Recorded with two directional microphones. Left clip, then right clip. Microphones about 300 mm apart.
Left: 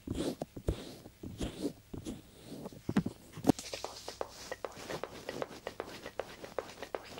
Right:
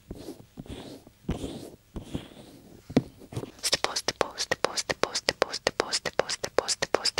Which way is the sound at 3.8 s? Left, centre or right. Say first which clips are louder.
Right 13 dB; right.